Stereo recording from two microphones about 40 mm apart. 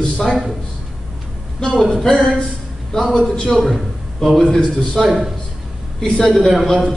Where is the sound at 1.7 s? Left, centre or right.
Centre.